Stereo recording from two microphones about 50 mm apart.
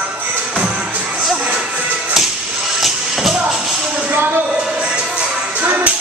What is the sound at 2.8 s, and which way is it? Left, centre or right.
Music, centre.